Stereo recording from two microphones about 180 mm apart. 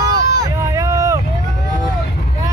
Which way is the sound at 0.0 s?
20° right (ahead or behind).